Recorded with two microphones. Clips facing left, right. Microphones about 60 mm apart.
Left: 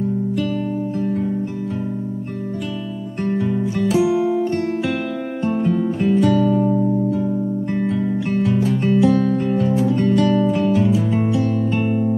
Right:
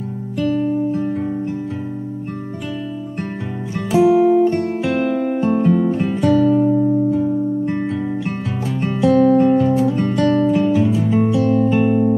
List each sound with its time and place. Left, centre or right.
0.4 s music: centre
3.7 s music: centre
4.0 s music: centre
4.9 s music: centre
9.9 s music: centre